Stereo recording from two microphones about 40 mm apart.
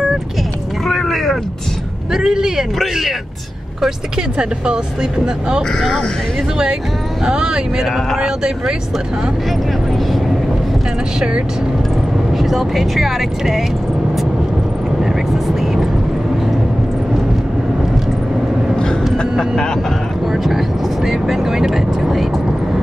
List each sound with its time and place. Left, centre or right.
0.8 s a sound: centre
2.1 s speech: centre
2.9 s speech: centre
5.6 s speech: centre
7.2 s speech: right
12.3 s speech: centre
15.0 s vehicle: centre
20.2 s speech: centre